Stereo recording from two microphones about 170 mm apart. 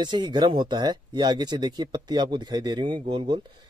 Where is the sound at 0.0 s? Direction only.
25° right (ahead or behind).